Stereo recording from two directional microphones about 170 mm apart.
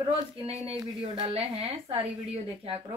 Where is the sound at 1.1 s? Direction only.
35° right (ahead or behind).